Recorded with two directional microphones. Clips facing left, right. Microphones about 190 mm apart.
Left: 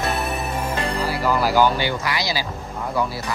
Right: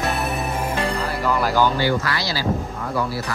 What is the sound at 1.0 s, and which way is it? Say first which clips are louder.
Music: left 1 dB; 5° left (ahead or behind).